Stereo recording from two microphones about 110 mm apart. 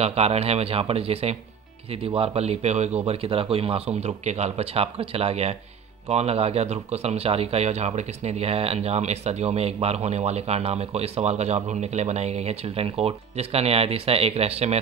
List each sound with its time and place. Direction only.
0.0 s speech: 70° right (ahead or behind)